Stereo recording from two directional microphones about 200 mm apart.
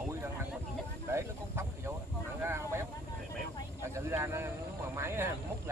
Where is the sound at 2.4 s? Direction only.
15° right (ahead or behind).